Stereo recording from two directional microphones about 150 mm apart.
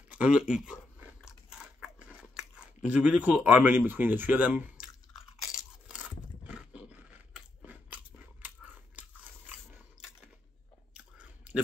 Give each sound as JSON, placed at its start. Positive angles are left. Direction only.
{"t": 0.1, "sound": "crunch", "side_deg": -5}
{"t": 5.4, "sound": "roar", "side_deg": -5}
{"t": 11.1, "sound": "chewing", "side_deg": -10}